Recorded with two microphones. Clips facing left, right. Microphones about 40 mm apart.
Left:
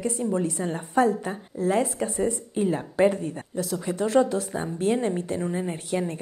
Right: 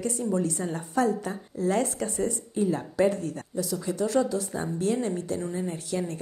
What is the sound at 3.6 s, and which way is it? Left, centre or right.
Speech, left.